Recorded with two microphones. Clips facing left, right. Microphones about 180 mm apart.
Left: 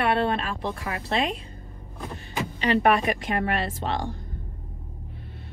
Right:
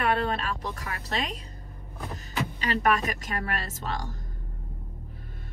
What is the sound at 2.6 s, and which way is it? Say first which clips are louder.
Speech: left 5 dB; 40° right (ahead or behind).